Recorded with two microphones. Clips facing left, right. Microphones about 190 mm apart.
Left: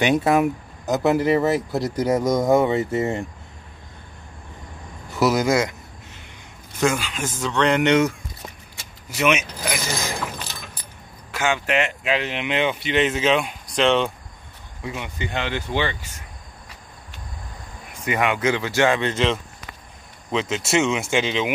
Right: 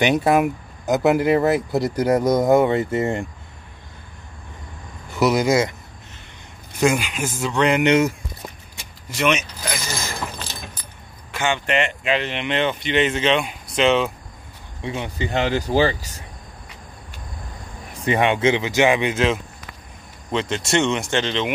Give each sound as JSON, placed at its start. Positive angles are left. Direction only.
{"t": 0.1, "sound": "speech", "side_deg": -5}
{"t": 5.1, "sound": "speech", "side_deg": 0}
{"t": 6.8, "sound": "speech", "side_deg": -15}
{"t": 9.1, "sound": "speech", "side_deg": 5}
{"t": 11.3, "sound": "speech", "side_deg": 5}
{"t": 14.8, "sound": "speech", "side_deg": -30}
{"t": 18.0, "sound": "speech", "side_deg": -30}